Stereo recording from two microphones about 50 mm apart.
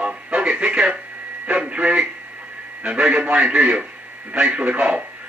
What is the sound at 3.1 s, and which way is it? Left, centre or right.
Speech, right.